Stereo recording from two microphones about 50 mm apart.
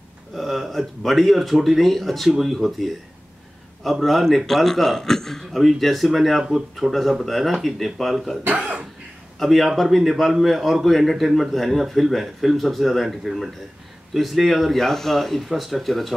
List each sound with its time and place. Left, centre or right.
0.3 s a man's voice: centre
8.5 s speech: right
9.4 s a man's voice: centre